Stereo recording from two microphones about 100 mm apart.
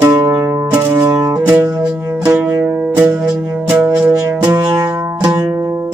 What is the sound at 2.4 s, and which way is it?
Music, 10° right (ahead or behind).